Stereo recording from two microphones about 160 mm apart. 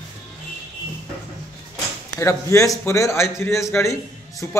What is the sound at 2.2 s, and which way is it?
A man's voice, 20° left (ahead or behind).